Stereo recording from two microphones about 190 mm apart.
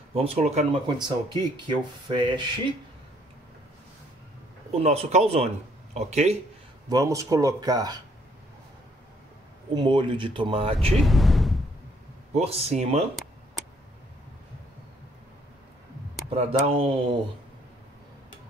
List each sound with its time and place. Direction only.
0.1 s speech: 30° right (ahead or behind)
1.0 s speech: 25° right (ahead or behind)
4.6 s speech: 30° right (ahead or behind)
6.9 s speech: 20° right (ahead or behind)
9.8 s speech: 25° right (ahead or behind)
11.0 s a sound: centre (ahead or behind)
12.3 s speech: 30° right (ahead or behind)
16.3 s speech: 30° right (ahead or behind)